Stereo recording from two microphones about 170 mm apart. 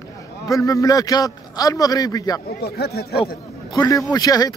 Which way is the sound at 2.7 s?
70° left (ahead or behind).